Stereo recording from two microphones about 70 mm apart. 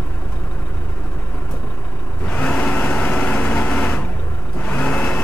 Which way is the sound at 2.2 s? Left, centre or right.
Centre.